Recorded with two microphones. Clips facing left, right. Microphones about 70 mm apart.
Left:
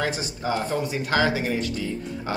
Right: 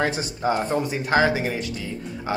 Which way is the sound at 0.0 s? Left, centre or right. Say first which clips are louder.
Right 3 dB; right.